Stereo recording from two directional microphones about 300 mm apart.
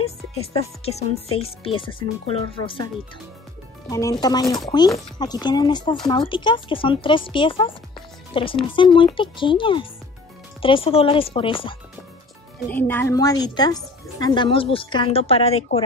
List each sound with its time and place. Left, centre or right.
0.5 s speech: centre
3.9 s speech: centre
12.6 s speech: centre